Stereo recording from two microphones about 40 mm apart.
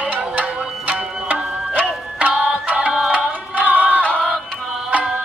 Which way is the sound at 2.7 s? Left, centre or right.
Right.